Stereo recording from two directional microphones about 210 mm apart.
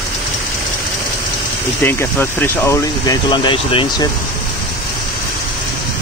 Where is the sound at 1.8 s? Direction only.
10° left (ahead or behind).